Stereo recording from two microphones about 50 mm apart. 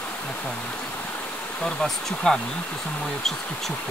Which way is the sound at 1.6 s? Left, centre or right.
Centre.